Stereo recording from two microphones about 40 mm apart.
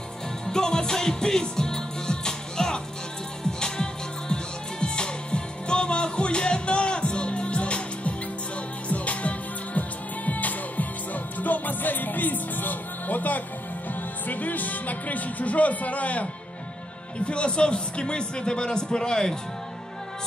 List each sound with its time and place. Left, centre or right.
0.5 s music: centre; by 13.4 s left
14.2 s a man's voice: left; by 19.3 s centre